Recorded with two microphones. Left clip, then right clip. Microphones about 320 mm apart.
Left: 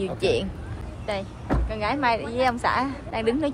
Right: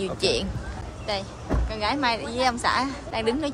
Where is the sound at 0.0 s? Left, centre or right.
Centre.